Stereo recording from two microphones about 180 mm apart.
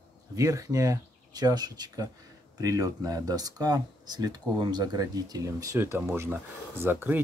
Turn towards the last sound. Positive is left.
turn(degrees=-10)  # may be behind; listen again after turning